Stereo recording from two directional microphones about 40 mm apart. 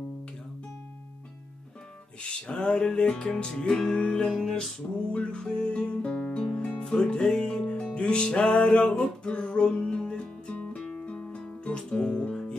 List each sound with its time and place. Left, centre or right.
2.2 s music: left
10.7 s guitar: left